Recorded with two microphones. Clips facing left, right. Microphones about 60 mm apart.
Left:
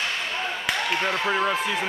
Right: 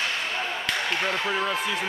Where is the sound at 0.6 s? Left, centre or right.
Centre.